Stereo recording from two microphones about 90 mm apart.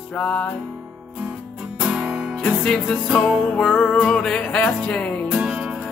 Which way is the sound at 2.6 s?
5° left (ahead or behind).